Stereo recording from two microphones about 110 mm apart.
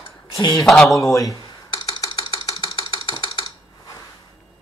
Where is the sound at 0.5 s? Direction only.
5° left (ahead or behind).